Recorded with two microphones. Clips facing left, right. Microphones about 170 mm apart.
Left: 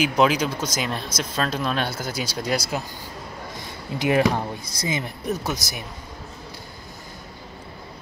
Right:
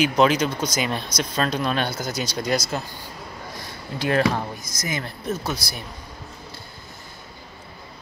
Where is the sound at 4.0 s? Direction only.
15° left (ahead or behind).